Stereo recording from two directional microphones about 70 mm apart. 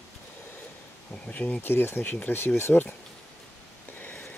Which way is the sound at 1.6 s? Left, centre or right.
Left.